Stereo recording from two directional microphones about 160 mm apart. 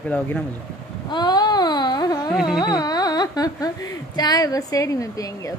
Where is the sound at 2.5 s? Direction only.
25° left (ahead or behind).